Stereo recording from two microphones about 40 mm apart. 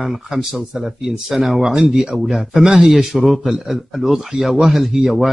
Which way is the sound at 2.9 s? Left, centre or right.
Centre.